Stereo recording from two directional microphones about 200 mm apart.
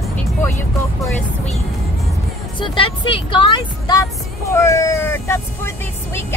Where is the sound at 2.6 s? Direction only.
25° left (ahead or behind).